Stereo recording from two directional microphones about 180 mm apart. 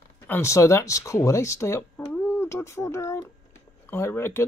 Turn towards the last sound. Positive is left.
turn(degrees=15)  # may be behind; listen again after turning